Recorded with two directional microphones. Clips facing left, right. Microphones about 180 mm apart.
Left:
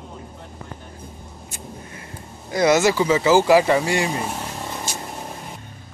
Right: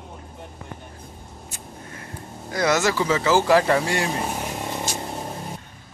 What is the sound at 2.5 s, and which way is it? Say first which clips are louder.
Speech: left 4 dB; 15° left (ahead or behind).